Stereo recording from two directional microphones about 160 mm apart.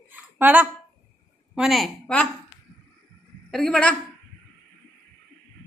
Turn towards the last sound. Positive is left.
turn(degrees=5)  # may be behind; listen again after turning